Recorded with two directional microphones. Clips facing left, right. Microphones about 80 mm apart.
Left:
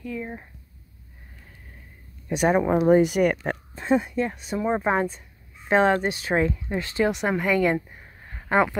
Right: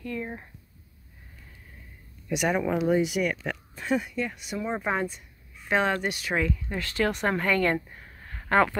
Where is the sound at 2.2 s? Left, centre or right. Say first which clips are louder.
Left 5 dB; left.